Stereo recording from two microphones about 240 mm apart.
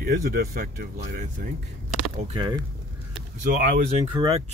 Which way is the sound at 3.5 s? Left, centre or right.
Right.